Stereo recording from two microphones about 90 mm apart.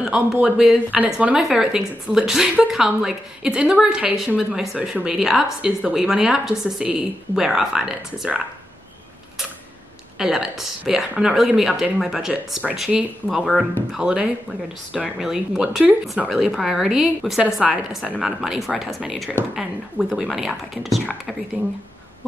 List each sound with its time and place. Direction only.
0.0 s a woman's voice: 10° right (ahead or behind)
10.1 s a woman's voice: 5° right (ahead or behind)